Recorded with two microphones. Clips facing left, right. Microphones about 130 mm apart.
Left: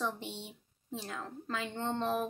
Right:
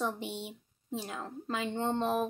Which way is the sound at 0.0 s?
15° right (ahead or behind).